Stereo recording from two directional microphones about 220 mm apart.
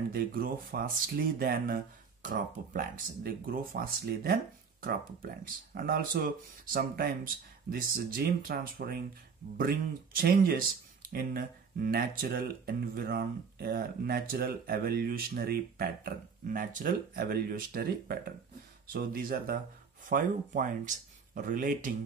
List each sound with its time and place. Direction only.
0.1 s speech: 40° right (ahead or behind)
5.8 s speech: 40° right (ahead or behind)